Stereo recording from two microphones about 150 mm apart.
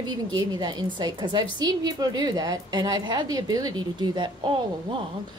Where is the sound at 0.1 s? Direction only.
30° right (ahead or behind).